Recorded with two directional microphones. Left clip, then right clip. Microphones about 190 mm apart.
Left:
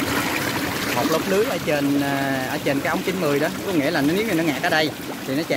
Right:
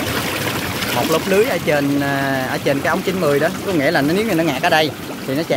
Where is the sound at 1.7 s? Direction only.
20° right (ahead or behind).